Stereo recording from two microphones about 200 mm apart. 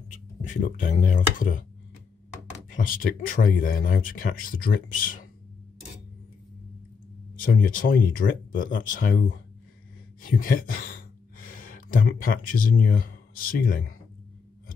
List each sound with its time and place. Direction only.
0.4 s speech: 35° left (ahead or behind)
2.7 s speech: 45° left (ahead or behind)
7.4 s speech: 45° left (ahead or behind)
10.4 s speech: 45° left (ahead or behind)